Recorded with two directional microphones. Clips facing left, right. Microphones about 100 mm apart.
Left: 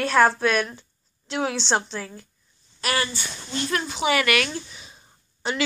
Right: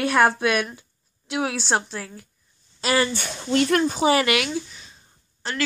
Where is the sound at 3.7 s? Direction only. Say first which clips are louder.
Right 2 dB; 45° right (ahead or behind).